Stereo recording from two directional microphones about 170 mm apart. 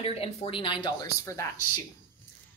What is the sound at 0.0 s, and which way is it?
Speech, 35° left (ahead or behind).